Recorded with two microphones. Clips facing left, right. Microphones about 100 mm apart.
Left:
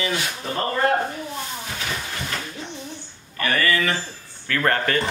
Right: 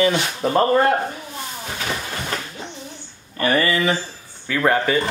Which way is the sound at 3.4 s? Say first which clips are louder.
Right 3 dB; 25° right (ahead or behind).